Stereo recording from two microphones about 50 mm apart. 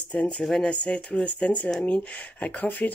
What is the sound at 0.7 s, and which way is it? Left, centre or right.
Speech, left.